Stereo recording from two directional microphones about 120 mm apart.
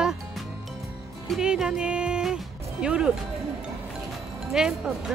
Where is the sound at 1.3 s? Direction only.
5° right (ahead or behind).